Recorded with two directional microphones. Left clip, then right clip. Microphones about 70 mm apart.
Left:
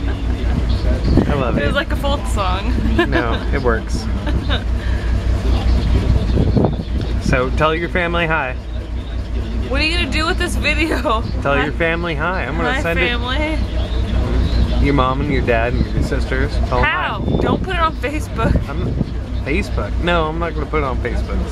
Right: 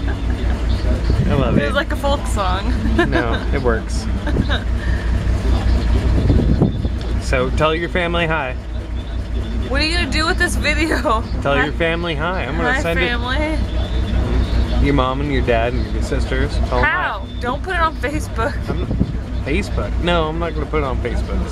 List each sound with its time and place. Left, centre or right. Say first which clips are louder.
1.3 s speech: right 5 dB; centre
7.2 s speech: left 1 dB; centre
9.7 s speech: left 1 dB; centre
14.9 s speech: left 1 dB; centre